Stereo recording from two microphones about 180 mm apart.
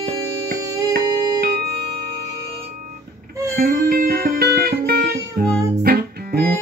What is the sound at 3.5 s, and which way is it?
Music, 55° right (ahead or behind).